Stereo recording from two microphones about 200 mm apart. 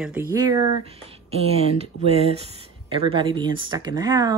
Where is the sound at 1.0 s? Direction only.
30° right (ahead or behind).